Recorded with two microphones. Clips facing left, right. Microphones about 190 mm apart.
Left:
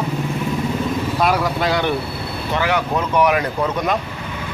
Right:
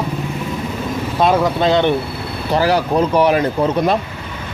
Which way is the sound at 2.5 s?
35° right (ahead or behind).